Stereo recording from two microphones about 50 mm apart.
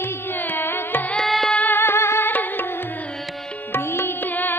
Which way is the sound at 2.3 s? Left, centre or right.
Left.